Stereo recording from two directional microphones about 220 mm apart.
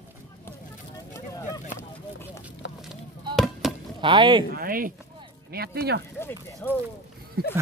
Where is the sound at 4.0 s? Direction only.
20° right (ahead or behind).